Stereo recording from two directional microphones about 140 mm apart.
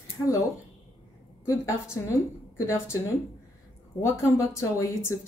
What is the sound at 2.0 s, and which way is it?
Speech, 20° left (ahead or behind).